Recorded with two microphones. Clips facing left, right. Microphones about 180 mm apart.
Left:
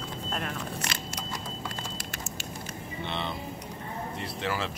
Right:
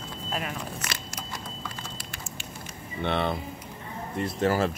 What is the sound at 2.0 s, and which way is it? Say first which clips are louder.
Fire: left 2 dB; 40° left (ahead or behind).